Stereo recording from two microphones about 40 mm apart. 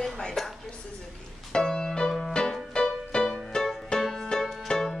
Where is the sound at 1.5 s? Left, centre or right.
Centre.